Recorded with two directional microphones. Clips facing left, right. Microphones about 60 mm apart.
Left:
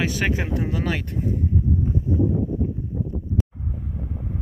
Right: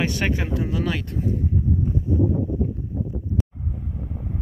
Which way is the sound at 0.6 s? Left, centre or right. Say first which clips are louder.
Even; left.